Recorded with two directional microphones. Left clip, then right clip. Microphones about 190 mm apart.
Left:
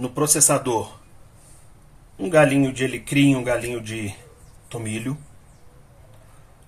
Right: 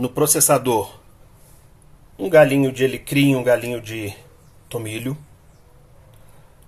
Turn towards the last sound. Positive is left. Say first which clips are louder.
# right 3 dB
turn(degrees=-40)  # may be behind; listen again after turning